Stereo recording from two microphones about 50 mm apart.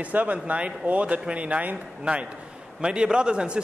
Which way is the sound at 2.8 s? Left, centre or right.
Centre.